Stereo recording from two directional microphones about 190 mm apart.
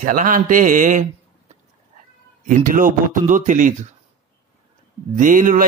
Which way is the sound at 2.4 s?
45° right (ahead or behind).